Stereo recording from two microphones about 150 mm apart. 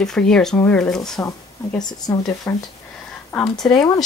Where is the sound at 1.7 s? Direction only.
25° left (ahead or behind).